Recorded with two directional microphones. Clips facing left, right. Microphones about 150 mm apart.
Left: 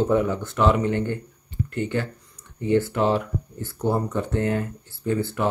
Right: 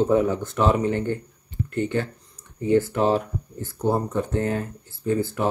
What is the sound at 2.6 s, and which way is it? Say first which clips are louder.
Speech: right 1 dB; 40° right (ahead or behind).